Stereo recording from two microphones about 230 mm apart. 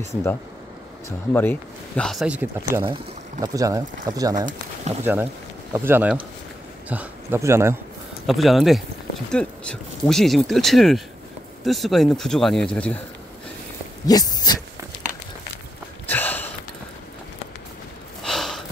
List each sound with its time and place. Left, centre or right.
1.3 s speech: centre
2.8 s speech: centre
8.3 s speech: centre
14.0 s a sound: centre
16.1 s sniff: centre
18.2 s a sound: centre